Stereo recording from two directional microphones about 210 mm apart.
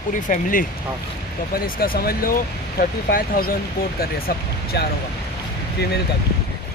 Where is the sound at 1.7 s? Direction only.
45° left (ahead or behind).